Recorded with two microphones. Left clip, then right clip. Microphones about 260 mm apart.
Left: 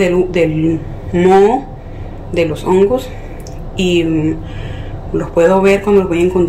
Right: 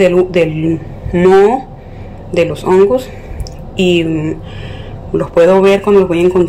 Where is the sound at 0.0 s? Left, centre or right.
Centre.